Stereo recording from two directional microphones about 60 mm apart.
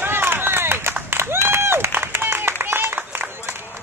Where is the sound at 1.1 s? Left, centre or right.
Right.